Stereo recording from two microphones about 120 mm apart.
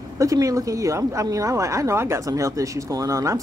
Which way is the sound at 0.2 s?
30° right (ahead or behind).